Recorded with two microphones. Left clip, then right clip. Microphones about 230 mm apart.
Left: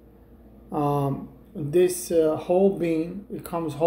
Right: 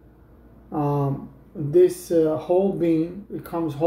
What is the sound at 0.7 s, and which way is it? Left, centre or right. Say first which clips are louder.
Speech: even; centre.